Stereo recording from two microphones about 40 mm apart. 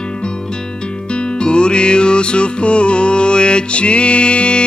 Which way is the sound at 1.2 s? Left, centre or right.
Left.